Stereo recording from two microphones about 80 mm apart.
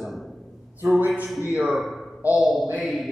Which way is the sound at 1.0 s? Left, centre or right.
Centre.